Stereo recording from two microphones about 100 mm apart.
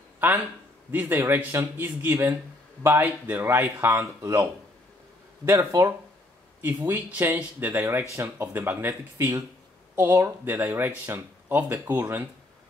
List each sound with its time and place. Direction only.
0.2 s a man's voice: 15° right (ahead or behind)
6.9 s speech: 20° right (ahead or behind)